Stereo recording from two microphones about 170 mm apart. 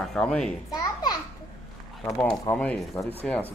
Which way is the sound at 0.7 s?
25° left (ahead or behind).